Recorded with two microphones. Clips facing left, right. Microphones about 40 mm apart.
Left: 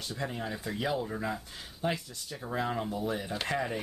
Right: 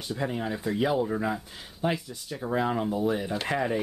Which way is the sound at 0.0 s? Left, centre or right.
Centre.